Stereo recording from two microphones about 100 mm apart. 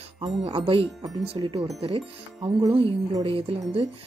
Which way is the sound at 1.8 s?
70° right (ahead or behind).